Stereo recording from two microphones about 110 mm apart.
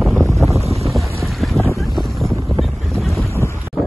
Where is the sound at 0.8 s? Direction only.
Centre (ahead or behind).